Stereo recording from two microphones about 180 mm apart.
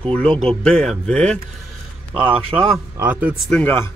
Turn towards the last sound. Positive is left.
turn(degrees=10)  # may be behind; listen again after turning